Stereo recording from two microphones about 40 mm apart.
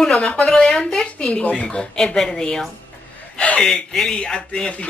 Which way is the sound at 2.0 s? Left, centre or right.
Centre.